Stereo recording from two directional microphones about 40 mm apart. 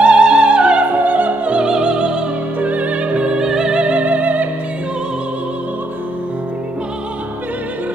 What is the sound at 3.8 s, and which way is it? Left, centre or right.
Music, right.